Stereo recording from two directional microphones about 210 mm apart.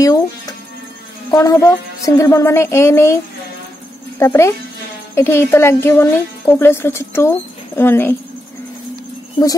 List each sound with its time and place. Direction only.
0.0 s a woman's voice: 15° left (ahead or behind)
4.2 s a woman's voice: 15° left (ahead or behind)